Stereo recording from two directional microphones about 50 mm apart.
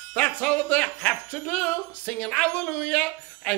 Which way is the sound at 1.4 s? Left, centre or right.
Left.